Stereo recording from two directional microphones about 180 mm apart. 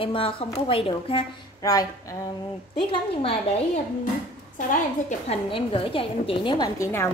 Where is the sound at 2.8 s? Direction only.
30° left (ahead or behind).